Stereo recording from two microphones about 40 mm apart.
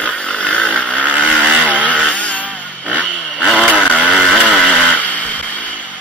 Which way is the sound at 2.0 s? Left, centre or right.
Left.